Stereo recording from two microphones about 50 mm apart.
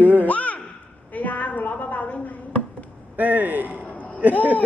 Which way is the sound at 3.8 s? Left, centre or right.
Left.